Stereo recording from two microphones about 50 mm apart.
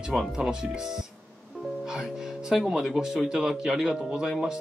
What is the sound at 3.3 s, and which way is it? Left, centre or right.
A man's voice, centre.